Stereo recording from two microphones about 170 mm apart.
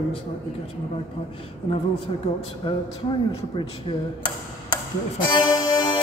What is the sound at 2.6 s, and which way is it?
Speech, 30° left (ahead or behind).